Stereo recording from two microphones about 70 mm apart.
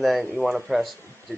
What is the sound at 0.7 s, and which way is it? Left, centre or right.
Speech, centre.